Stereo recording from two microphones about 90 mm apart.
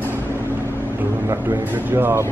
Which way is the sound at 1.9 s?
25° right (ahead or behind).